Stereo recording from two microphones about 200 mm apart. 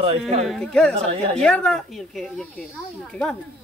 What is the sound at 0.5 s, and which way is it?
Speech, 5° left (ahead or behind).